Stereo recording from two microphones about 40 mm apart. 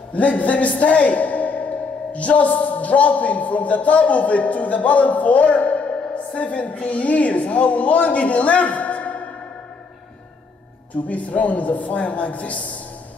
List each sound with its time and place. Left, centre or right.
0.1 s a man's voice: left
11.1 s a woman's voice: left